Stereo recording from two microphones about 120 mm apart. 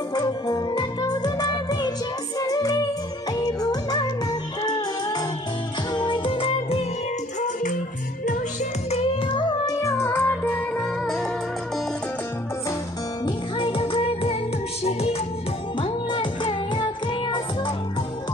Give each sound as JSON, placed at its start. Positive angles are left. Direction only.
{"t": 0.1, "sound": "music", "side_deg": 35}
{"t": 8.9, "sound": "music", "side_deg": 50}
{"t": 9.7, "sound": "music", "side_deg": 25}
{"t": 10.8, "sound": "music", "side_deg": 5}
{"t": 13.2, "sound": "music", "side_deg": 45}
{"t": 15.8, "sound": "music", "side_deg": 45}